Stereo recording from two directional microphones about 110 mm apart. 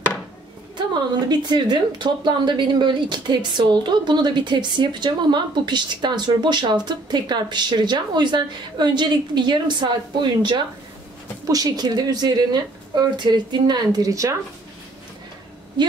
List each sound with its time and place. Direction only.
1.3 s speech: 40° right (ahead or behind)
11.4 s speech: 35° right (ahead or behind)